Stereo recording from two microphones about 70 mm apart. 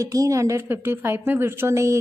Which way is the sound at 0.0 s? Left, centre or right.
Right.